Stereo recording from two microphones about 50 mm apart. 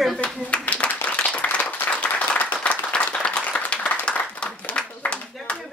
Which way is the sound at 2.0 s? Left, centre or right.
Left.